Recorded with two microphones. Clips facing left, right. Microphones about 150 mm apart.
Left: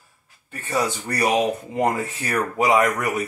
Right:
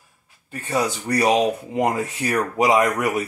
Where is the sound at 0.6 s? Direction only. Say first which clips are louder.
Right 1 dB; 20° right (ahead or behind).